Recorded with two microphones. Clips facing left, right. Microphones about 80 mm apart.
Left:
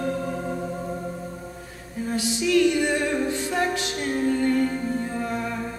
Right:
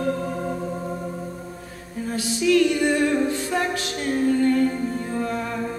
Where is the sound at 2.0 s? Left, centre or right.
Left.